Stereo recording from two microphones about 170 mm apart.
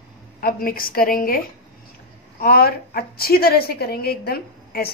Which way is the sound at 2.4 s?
60° left (ahead or behind).